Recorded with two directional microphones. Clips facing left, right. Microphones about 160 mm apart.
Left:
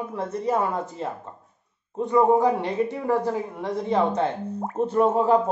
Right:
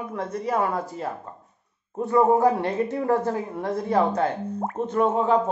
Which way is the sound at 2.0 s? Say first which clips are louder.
Even; 15° left (ahead or behind).